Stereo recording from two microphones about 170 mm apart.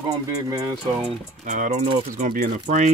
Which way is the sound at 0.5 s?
25° right (ahead or behind).